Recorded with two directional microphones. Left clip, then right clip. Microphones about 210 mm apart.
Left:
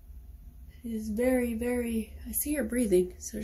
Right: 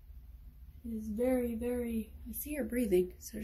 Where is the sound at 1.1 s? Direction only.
20° left (ahead or behind).